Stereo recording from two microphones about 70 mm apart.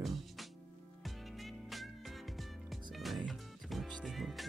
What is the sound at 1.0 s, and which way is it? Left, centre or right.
Music, centre.